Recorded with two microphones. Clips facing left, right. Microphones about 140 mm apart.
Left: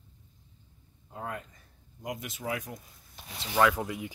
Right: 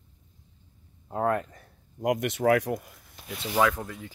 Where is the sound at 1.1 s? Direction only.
65° right (ahead or behind).